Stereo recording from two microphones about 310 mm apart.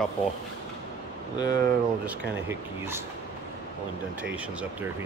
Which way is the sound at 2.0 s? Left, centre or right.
Centre.